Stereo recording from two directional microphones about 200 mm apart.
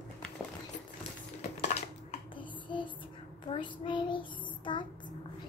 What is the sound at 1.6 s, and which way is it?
Dishes, 35° left (ahead or behind).